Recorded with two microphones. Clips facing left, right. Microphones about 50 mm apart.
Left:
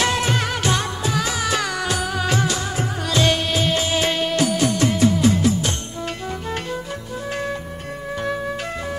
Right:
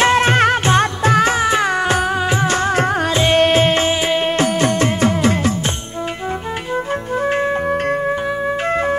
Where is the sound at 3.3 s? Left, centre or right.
Right.